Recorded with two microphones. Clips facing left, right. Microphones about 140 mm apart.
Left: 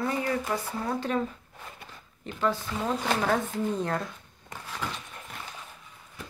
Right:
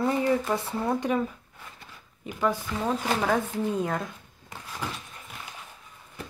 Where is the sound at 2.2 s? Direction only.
10° right (ahead or behind).